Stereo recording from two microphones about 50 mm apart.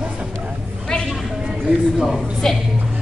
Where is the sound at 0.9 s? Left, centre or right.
Centre.